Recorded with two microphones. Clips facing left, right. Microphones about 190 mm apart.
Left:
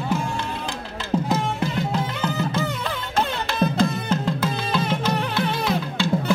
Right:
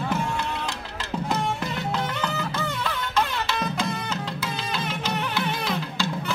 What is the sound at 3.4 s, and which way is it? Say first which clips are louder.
Music: left 6 dB; 50° left (ahead or behind).